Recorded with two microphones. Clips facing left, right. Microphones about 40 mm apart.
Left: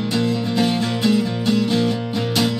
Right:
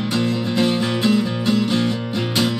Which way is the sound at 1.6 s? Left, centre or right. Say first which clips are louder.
Left 1 dB; centre.